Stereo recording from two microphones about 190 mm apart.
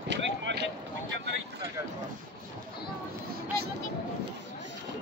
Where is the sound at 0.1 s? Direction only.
70° right (ahead or behind).